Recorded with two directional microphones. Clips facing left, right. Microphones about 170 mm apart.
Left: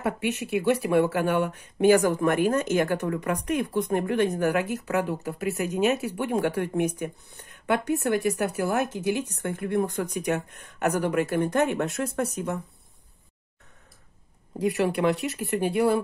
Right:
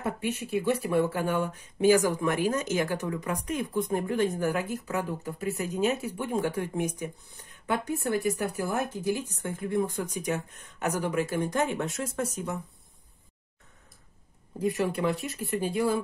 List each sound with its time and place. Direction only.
0.0 s speech: 75° left (ahead or behind)
14.6 s speech: 75° left (ahead or behind)